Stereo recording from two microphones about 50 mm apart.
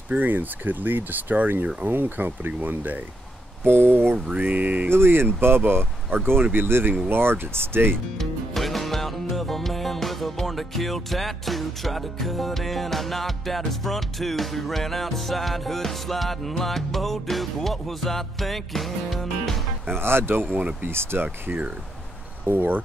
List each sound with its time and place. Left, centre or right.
0.2 s speech: right
3.6 s speech: right
4.4 s speech: right
4.8 s speech: right
8.2 s music: centre
19.9 s speech: right
20.4 s speech: right
20.8 s speech: right